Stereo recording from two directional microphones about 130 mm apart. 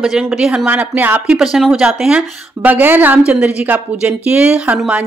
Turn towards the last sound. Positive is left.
turn(degrees=-10)  # may be behind; listen again after turning